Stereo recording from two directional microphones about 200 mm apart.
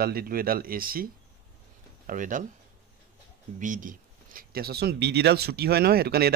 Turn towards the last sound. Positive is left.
turn(degrees=-50)  # may be behind; listen again after turning